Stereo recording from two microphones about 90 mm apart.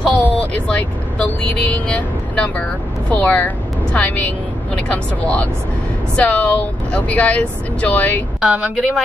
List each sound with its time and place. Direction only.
0.0 s speech: 15° left (ahead or behind)
8.4 s a woman's voice: 5° right (ahead or behind)